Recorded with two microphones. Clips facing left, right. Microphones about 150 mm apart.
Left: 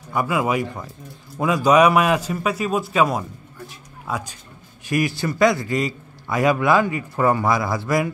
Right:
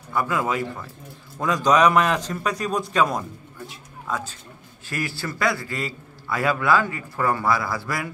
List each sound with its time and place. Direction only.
0.1 s a man's voice: 15° left (ahead or behind)